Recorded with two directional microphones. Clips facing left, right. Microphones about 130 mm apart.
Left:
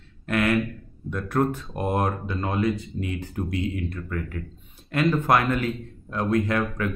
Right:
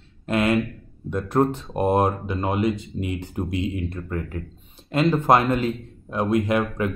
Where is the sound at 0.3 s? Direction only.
25° right (ahead or behind).